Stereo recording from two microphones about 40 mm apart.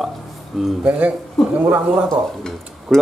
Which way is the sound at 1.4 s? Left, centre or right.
Centre.